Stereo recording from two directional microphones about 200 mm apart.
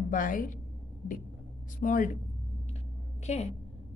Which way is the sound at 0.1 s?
40° left (ahead or behind).